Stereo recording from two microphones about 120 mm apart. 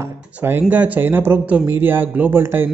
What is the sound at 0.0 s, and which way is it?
Speech, 15° right (ahead or behind).